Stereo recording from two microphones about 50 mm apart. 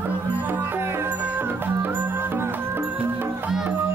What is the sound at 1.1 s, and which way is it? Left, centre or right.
Music, right.